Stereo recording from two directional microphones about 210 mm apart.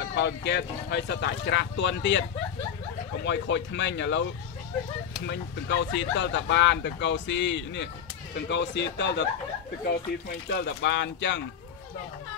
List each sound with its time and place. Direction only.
0.1 s speech: 55° left (ahead or behind)
3.3 s speech: 55° left (ahead or behind)
5.2 s speech: 60° left (ahead or behind)
10.5 s speech: 55° left (ahead or behind)